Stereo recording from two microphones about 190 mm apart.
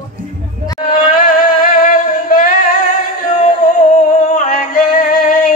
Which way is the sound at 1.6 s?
45° left (ahead or behind).